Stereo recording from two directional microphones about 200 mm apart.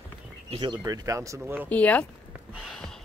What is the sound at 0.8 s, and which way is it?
Speech, 15° right (ahead or behind).